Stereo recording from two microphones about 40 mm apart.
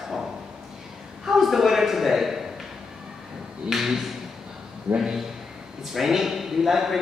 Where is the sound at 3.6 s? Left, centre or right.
Centre.